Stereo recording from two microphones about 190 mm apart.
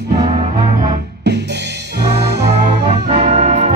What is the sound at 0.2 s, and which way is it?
Music, 30° right (ahead or behind).